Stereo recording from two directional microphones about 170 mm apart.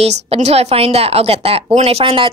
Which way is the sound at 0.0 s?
40° right (ahead or behind).